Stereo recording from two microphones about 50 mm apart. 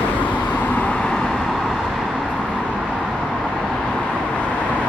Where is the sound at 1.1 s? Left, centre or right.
Centre.